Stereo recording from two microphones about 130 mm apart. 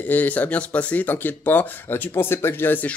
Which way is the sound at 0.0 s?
15° left (ahead or behind).